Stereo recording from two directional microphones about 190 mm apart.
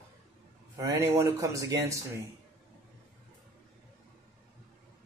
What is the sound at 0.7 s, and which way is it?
Speech, 20° right (ahead or behind).